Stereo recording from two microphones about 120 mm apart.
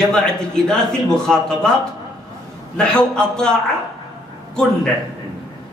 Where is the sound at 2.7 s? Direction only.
5° left (ahead or behind).